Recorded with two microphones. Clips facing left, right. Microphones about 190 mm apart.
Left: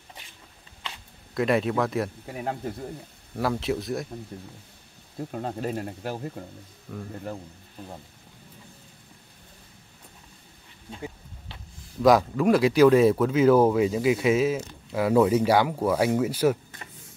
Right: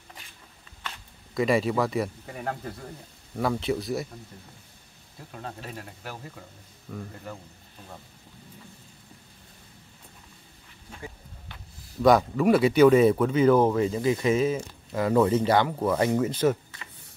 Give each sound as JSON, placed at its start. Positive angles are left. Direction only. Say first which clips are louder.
{"t": 1.3, "sound": "speech", "louder": "even", "side_deg": 0}
{"t": 5.3, "sound": "speech", "louder": "left 8 dB", "side_deg": 45}
{"t": 6.9, "sound": "speech", "louder": "even", "side_deg": 0}
{"t": 12.0, "sound": "speech", "louder": "left 1 dB", "side_deg": 0}